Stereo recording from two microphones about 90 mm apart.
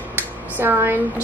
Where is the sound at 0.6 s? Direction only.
25° right (ahead or behind).